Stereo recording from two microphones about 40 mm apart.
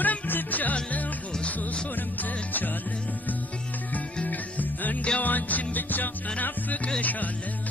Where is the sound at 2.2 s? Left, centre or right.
Left.